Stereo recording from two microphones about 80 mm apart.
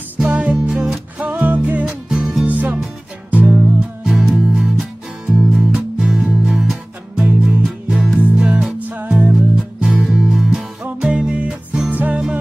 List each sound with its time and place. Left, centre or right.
0.2 s music: centre
1.1 s music: centre
2.0 s music: centre
2.4 s music: centre
4.1 s music: centre
7.2 s music: centre
7.6 s music: centre
8.8 s music: right
9.1 s music: centre